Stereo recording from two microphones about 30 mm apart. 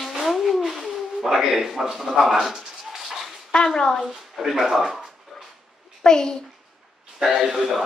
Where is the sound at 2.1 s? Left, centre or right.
Centre.